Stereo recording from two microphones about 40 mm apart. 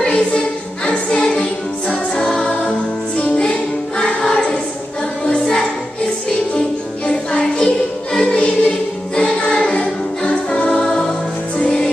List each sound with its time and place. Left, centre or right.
0.0 s music: left
7.1 s music: left
10.8 s music: centre